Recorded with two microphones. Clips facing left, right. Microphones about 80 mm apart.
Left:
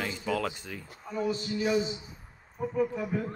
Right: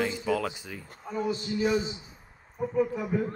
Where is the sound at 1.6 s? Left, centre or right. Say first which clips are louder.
Right 1 dB; right.